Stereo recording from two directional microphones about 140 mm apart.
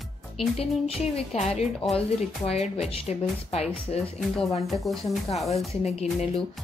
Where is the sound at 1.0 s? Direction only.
50° left (ahead or behind).